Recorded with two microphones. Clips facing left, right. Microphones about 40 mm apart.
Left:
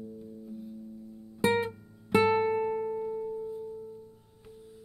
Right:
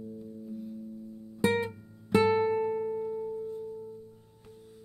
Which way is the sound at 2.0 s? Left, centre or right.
Centre.